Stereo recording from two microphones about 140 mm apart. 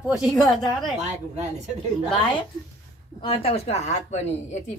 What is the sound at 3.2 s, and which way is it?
A woman's voice, 40° left (ahead or behind).